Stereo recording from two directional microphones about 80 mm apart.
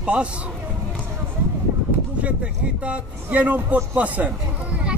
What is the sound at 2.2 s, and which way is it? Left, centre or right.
A man's voice, centre.